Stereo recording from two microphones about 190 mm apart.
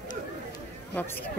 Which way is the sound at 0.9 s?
10° left (ahead or behind).